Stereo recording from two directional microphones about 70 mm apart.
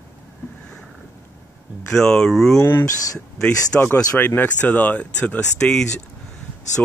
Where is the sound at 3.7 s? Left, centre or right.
Left.